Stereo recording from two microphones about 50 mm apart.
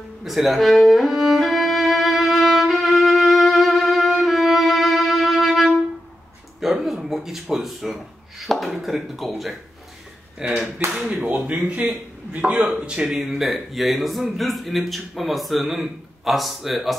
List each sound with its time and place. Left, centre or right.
0.2 s music: centre
6.6 s a sound: centre
8.7 s a man's voice: centre
10.4 s speech: centre
11.0 s speech: right
12.7 s speech: centre
13.0 s a man's voice: centre